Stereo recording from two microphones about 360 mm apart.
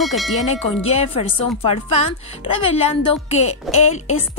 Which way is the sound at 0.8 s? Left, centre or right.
Centre.